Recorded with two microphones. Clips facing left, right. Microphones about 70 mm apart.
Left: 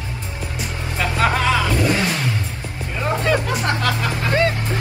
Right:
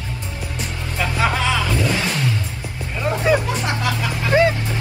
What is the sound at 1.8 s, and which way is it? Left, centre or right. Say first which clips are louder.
Vehicle: left 2 dB; centre.